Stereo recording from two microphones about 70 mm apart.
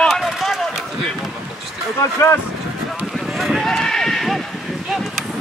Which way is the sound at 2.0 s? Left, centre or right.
Left.